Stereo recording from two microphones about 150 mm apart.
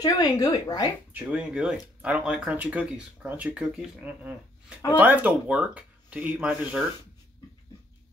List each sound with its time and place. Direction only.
0.0 s speech: 25° left (ahead or behind)
1.1 s speech: 5° right (ahead or behind)